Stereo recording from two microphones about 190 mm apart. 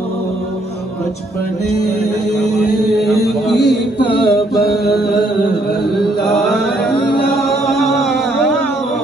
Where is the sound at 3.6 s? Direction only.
60° left (ahead or behind).